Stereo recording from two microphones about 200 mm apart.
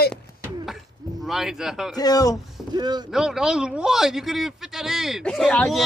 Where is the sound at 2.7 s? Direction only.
20° right (ahead or behind).